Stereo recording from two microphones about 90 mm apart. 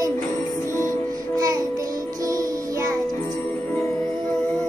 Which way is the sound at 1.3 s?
40° right (ahead or behind).